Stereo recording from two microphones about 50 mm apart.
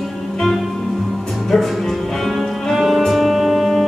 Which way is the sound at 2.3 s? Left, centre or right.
Centre.